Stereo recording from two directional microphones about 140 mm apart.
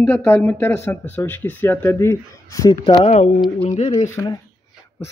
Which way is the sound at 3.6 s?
50° left (ahead or behind).